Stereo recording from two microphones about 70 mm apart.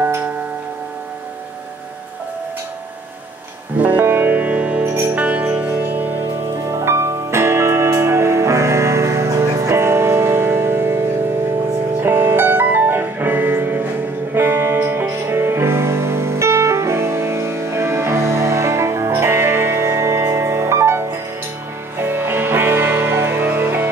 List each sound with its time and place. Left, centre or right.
0.0 s music: right
3.7 s music: right
4.8 s music: right
5.1 s music: right